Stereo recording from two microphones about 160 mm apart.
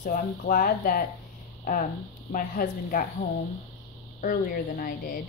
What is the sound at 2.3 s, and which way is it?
Speech, 60° left (ahead or behind).